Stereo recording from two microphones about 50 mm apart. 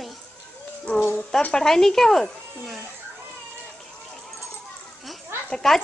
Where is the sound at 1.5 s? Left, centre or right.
Centre.